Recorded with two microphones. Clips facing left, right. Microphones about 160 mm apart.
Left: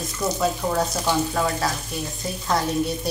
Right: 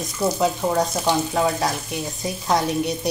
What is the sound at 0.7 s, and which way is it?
Frying, 15° right (ahead or behind).